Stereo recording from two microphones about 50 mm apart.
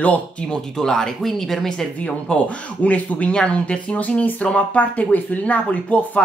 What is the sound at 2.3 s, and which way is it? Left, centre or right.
Speech, left.